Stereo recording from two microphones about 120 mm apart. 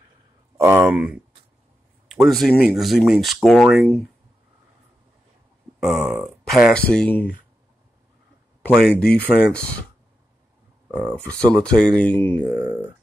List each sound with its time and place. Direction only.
0.6 s speech: 20° right (ahead or behind)
0.8 s speech: 10° right (ahead or behind)
5.8 s speech: 5° right (ahead or behind)
6.7 s speech: 5° left (ahead or behind)
8.6 s speech: centre (ahead or behind)
10.9 s speech: 15° right (ahead or behind)
11.2 s speech: 10° left (ahead or behind)